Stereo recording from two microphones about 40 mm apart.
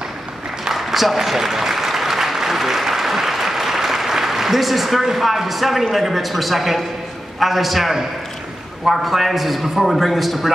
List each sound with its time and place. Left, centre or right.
0.7 s applause: centre
5.0 s a man's voice: centre